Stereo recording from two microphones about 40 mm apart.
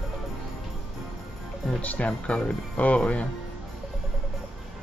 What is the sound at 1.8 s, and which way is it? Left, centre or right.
Speech, left.